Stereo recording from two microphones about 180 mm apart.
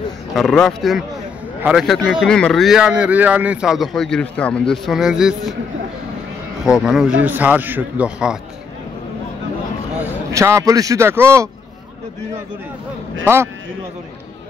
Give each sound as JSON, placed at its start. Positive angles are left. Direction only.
{"t": 0.4, "sound": "speech", "side_deg": 0}
{"t": 6.6, "sound": "a man's voice", "side_deg": -5}
{"t": 10.3, "sound": "a man's voice", "side_deg": -15}
{"t": 13.2, "sound": "a man's voice", "side_deg": -15}